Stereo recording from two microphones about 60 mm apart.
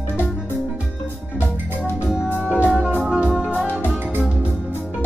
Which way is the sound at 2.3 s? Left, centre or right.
Left.